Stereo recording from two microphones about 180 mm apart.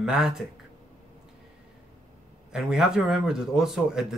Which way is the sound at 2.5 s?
5° right (ahead or behind).